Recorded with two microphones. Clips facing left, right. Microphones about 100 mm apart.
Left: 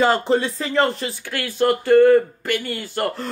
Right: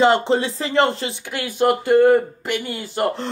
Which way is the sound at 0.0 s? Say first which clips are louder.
Right 2 dB; 25° right (ahead or behind).